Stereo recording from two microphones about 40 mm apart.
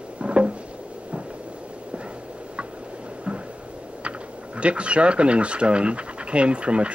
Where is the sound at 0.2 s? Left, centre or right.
Right.